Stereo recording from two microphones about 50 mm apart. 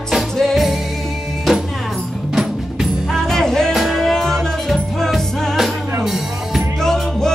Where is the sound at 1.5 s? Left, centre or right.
Centre.